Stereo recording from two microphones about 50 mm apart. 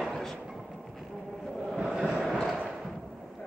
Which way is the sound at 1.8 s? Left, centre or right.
Centre.